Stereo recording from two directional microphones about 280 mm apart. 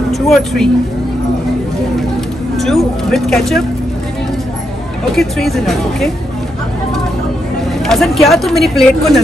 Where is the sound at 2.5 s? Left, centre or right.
Centre.